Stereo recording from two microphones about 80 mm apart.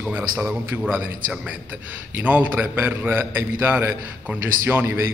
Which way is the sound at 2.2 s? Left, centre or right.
Right.